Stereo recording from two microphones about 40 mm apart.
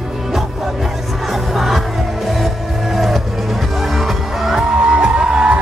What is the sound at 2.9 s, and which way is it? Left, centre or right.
Music, centre.